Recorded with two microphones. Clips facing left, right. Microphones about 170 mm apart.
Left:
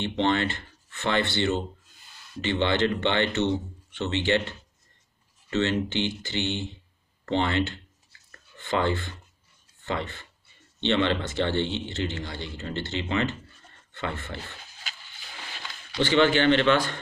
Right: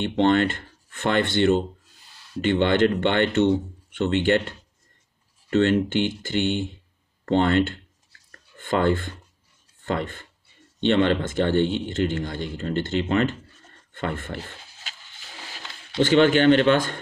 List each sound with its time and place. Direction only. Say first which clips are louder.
0.0 s a man's voice: right 5 dB; 50° right (ahead or behind)
8.3 s a sound: right 4 dB; 50° right (ahead or behind)
9.8 s a man's voice: right 4 dB; 45° right (ahead or behind)
16.0 s a man's voice: right 4 dB; 45° right (ahead or behind)